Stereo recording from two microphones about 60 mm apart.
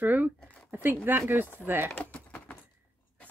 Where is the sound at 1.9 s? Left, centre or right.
Left.